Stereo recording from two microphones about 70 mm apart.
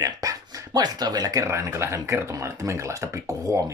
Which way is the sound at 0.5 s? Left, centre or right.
Right.